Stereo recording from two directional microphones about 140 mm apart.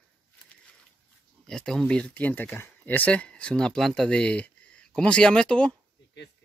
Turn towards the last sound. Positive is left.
turn(degrees=5)  # may be behind; listen again after turning